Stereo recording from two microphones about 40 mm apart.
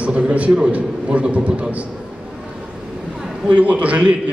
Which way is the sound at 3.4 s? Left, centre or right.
Right.